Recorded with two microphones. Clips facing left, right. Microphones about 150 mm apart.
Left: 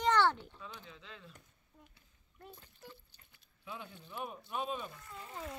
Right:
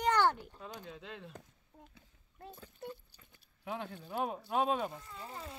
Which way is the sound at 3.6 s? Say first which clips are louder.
Right 7 dB; 90° right.